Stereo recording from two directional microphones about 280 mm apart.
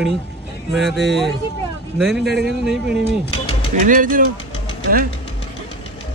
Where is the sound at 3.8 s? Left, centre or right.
Right.